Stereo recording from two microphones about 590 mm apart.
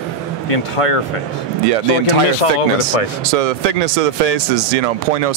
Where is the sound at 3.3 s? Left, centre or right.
Right.